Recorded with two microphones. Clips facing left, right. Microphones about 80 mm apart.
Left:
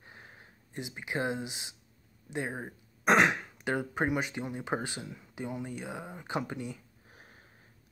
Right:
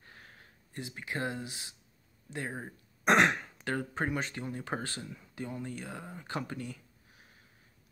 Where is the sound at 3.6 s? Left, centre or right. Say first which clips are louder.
Left 3 dB; centre.